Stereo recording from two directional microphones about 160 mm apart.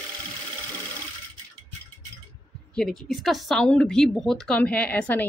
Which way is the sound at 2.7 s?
5° left (ahead or behind).